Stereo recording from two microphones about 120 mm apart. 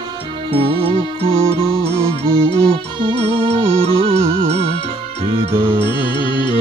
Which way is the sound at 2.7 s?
50° right (ahead or behind).